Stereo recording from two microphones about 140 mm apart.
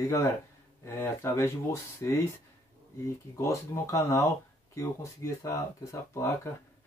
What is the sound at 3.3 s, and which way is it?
Speech, 20° left (ahead or behind).